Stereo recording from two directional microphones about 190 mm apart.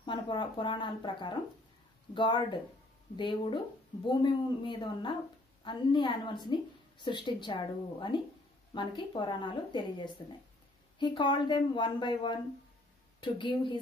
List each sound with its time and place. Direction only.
0.0 s a woman's voice: 25° left (ahead or behind)